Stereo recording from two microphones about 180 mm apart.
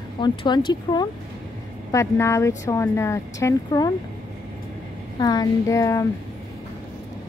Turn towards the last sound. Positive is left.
turn(degrees=15)  # may be behind; listen again after turning